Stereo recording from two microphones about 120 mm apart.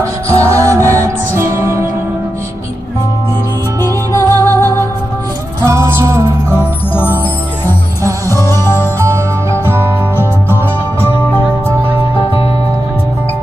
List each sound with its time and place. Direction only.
0.0 s music: 25° right (ahead or behind)
4.1 s music: 25° left (ahead or behind)
5.6 s music: 20° right (ahead or behind)
8.3 s music: 20° left (ahead or behind)
9.0 s music: 25° right (ahead or behind)